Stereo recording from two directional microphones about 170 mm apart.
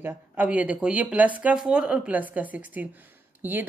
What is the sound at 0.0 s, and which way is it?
A woman's voice, 10° right (ahead or behind).